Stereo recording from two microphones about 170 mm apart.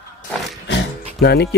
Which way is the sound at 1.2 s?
75° left (ahead or behind).